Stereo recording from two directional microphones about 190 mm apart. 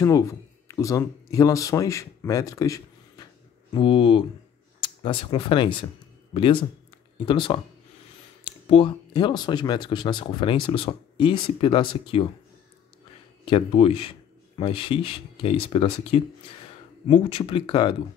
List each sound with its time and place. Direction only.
0.0 s speech: 15° left (ahead or behind)
13.5 s speech: 30° left (ahead or behind)